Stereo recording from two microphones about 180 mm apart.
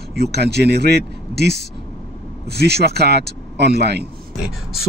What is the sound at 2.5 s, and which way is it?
Speech, 65° right (ahead or behind).